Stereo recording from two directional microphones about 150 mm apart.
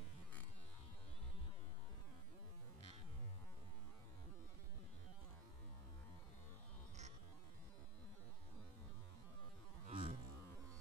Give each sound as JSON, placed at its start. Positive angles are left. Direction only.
{"t": 9.8, "sound": "roaring cats", "side_deg": -40}